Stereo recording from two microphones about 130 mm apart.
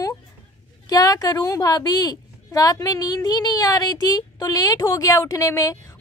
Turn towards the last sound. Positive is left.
turn(degrees=25)  # may be behind; listen again after turning